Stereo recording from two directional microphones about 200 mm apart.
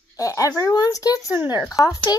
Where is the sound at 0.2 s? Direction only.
15° left (ahead or behind).